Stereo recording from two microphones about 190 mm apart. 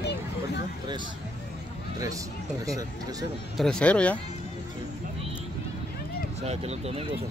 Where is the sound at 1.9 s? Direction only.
20° right (ahead or behind).